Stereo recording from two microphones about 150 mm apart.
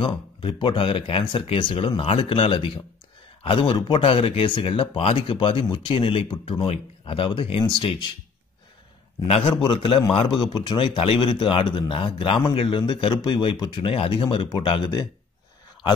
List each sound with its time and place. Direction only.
0.0 s speech: 35° left (ahead or behind)
9.3 s speech: 35° left (ahead or behind)